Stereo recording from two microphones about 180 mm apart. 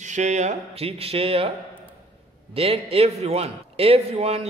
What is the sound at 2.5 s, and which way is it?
A man's voice, 35° right (ahead or behind).